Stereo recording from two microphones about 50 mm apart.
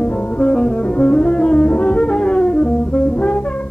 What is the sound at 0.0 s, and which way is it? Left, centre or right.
Music, left.